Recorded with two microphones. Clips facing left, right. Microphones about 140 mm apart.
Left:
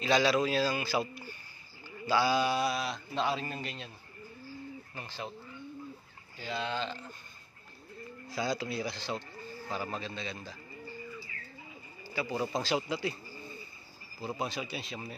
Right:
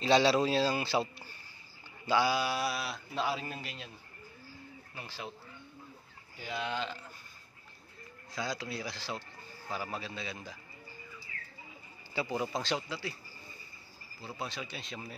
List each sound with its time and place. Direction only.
0.0 s a man's voice: 30° right (ahead or behind)
2.0 s speech: 15° right (ahead or behind)
4.9 s speech: 5° right (ahead or behind)
6.3 s speech: 15° right (ahead or behind)
8.3 s speech: 5° left (ahead or behind)
12.1 s speech: 25° right (ahead or behind)
12.5 s speech: 5° left (ahead or behind)
12.8 s speech: 20° left (ahead or behind)
14.4 s speech: 15° left (ahead or behind)